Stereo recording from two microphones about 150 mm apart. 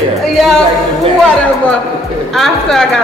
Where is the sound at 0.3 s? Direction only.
Centre (ahead or behind).